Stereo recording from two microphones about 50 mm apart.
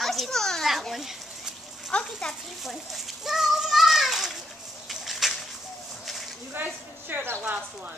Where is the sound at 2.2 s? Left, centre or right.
Centre.